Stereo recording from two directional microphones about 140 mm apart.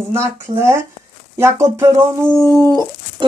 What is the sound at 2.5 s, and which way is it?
Speech, 25° right (ahead or behind).